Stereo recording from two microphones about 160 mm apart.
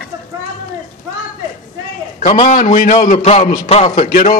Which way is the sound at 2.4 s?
55° left (ahead or behind).